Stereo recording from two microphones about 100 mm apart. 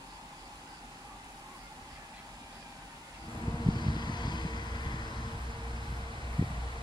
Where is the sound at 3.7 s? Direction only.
50° left (ahead or behind).